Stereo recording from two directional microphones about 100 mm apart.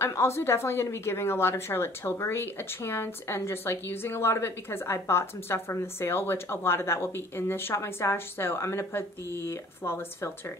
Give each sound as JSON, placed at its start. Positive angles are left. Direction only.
{"t": 0.0, "sound": "a woman's voice", "side_deg": 25}